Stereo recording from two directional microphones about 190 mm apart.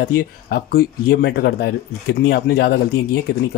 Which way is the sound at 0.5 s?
55° left (ahead or behind).